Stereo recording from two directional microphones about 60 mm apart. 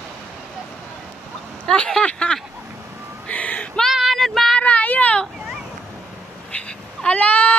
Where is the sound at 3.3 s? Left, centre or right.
Left.